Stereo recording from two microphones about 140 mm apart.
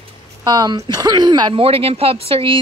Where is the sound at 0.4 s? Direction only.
30° right (ahead or behind).